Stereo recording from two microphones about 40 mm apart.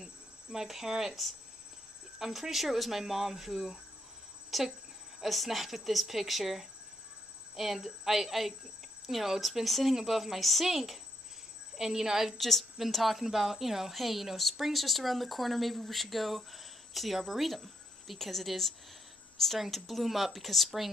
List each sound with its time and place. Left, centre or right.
0.0 s cricket: centre
0.7 s a woman's voice: centre
12.4 s a woman's voice: centre